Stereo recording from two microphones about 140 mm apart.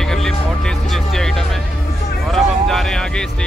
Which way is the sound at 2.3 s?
Centre (ahead or behind).